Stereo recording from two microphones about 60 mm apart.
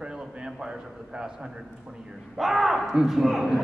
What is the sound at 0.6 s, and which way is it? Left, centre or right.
Speech, centre.